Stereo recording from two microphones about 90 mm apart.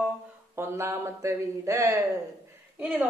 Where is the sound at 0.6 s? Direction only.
30° right (ahead or behind).